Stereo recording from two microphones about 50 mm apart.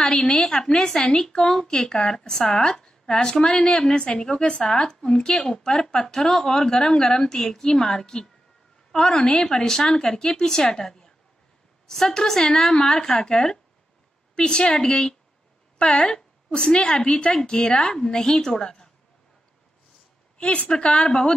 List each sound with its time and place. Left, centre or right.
0.0 s a woman's voice: centre
20.3 s a woman's voice: left